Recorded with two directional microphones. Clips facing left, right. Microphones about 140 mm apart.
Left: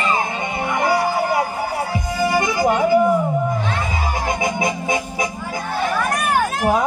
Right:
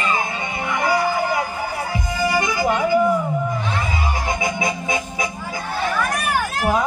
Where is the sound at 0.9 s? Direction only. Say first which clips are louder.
Even; 40° left (ahead or behind).